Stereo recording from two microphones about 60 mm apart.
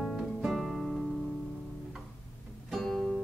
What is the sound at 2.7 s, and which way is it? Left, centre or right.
Music, centre.